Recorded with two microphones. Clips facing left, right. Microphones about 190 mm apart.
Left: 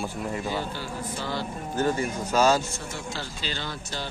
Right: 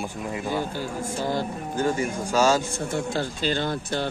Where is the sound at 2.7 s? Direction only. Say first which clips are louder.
Right 8 dB; 55° right (ahead or behind).